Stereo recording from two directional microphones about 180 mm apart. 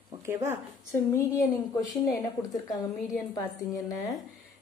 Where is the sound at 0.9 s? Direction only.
15° left (ahead or behind).